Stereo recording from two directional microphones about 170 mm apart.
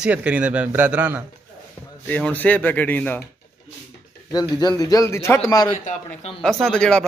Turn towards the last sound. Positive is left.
turn(degrees=5)  # may be behind; listen again after turning